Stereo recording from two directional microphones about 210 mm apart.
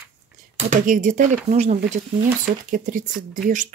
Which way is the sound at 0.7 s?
40° right (ahead or behind).